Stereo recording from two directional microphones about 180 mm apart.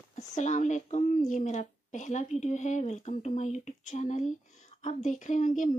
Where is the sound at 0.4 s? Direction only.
40° left (ahead or behind).